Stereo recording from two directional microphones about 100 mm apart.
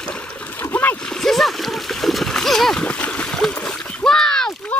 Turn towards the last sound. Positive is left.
turn(degrees=5)  # may be behind; listen again after turning